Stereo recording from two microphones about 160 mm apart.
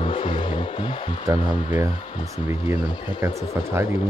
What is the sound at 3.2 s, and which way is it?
Speech, 15° right (ahead or behind).